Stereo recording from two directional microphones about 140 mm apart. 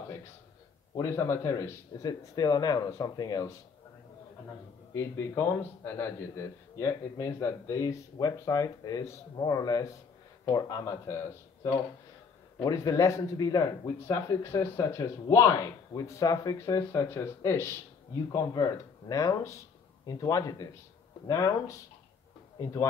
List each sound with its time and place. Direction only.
0.9 s a man's voice: 20° left (ahead or behind)
4.9 s a man's voice: 20° left (ahead or behind)
12.6 s a man's voice: 25° left (ahead or behind)